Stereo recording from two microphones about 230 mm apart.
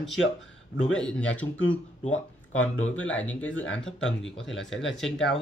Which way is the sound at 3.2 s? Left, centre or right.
Centre.